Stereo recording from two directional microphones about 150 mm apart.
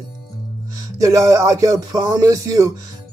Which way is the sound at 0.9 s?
20° right (ahead or behind).